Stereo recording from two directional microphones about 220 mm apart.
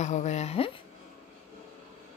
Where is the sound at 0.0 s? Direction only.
30° left (ahead or behind).